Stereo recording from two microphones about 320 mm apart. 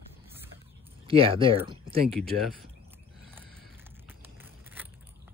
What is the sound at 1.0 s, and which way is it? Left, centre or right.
Speech, centre.